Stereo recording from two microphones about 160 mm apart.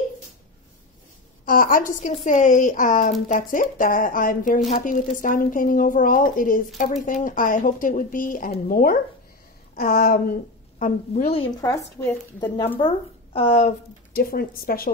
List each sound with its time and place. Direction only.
1.4 s a woman's voice: 60° left (ahead or behind)
11.6 s speech: 20° left (ahead or behind)
13.3 s speech: 40° left (ahead or behind)
14.1 s a woman's voice: 65° left (ahead or behind)